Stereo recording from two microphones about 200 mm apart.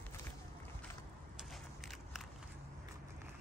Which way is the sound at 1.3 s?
Centre (ahead or behind).